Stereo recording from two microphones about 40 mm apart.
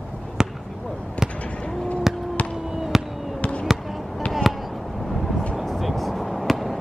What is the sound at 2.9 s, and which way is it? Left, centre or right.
Fireworks, centre.